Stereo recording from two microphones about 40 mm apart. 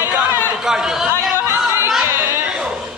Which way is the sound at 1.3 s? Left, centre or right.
Right.